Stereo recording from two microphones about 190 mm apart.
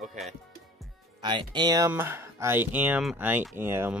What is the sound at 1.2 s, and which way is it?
Speech, 25° right (ahead or behind).